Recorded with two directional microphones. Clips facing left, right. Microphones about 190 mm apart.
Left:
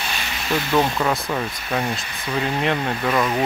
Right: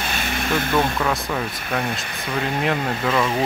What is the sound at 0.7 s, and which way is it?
Speech, 5° left (ahead or behind).